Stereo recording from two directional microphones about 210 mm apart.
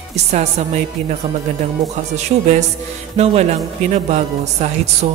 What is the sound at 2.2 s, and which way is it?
Music, 35° right (ahead or behind).